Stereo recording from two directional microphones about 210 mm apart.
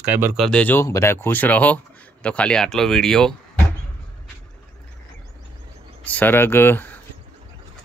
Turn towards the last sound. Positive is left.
turn(degrees=10)  # may be behind; listen again after turning